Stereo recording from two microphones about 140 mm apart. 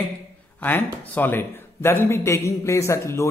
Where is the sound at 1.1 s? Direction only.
15° left (ahead or behind).